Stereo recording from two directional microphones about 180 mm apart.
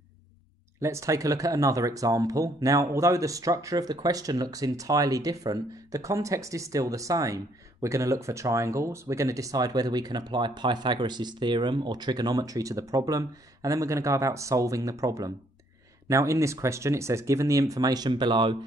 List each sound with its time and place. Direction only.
0.7 s speech: 15° right (ahead or behind)